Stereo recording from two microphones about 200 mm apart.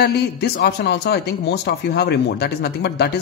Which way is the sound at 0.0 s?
55° left (ahead or behind).